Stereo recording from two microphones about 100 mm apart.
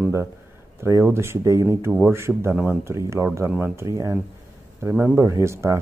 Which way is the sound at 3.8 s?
35° right (ahead or behind).